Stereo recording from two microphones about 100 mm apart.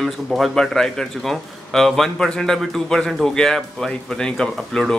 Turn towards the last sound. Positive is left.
turn(degrees=5)  # may be behind; listen again after turning